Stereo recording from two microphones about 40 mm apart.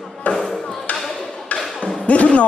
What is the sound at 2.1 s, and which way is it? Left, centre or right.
Speech, left.